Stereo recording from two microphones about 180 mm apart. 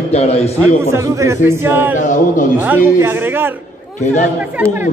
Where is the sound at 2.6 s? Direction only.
10° right (ahead or behind).